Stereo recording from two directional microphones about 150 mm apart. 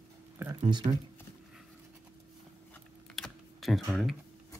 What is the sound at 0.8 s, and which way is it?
Speech, 30° right (ahead or behind).